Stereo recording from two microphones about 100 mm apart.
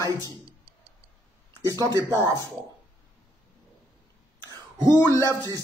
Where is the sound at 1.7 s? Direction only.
40° right (ahead or behind).